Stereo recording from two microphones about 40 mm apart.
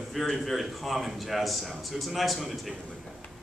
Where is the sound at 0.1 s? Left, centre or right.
Centre.